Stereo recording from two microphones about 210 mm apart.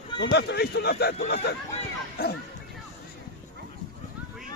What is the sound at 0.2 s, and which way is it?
Speech, 55° left (ahead or behind).